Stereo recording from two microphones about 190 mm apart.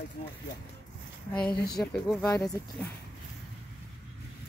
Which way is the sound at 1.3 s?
5° left (ahead or behind).